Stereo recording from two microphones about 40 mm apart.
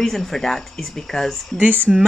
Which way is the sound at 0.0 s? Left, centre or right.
Centre.